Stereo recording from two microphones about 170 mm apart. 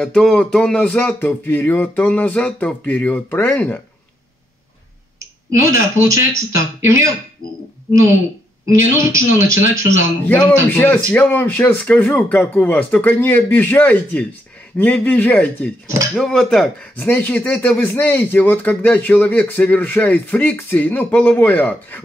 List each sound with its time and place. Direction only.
0.0 s speech: 5° left (ahead or behind)
5.6 s speech: 20° right (ahead or behind)
8.6 s speech: 20° right (ahead or behind)
10.7 s speech: 10° left (ahead or behind)